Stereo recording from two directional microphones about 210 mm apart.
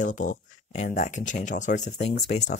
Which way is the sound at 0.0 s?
35° left (ahead or behind).